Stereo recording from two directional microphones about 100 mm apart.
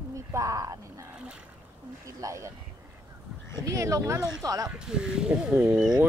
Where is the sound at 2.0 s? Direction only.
30° right (ahead or behind).